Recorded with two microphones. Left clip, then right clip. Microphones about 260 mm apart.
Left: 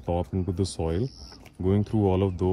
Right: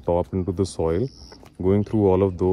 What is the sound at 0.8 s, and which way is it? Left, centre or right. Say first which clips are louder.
Speech: right 6 dB; right.